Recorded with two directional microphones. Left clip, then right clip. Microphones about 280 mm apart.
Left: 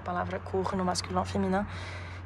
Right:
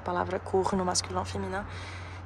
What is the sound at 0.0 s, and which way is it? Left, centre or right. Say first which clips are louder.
Speech: right 3 dB; centre.